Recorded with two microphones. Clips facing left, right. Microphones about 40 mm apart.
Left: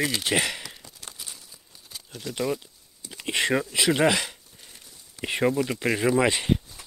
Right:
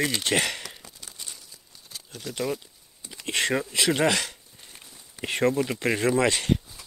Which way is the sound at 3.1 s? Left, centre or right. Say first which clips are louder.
Left 1 dB; centre.